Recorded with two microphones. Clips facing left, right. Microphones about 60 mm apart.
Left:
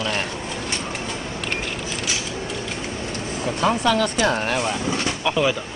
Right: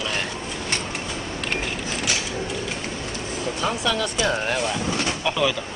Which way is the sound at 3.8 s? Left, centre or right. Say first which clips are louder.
Left 4 dB; left.